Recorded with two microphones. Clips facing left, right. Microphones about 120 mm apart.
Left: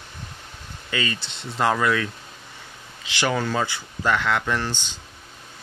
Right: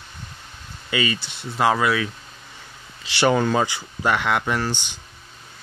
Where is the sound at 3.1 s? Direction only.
30° right (ahead or behind).